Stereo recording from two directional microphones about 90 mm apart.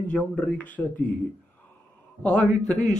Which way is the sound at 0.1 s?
15° left (ahead or behind).